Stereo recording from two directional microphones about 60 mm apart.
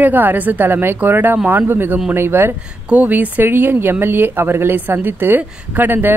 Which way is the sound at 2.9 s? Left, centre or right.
Right.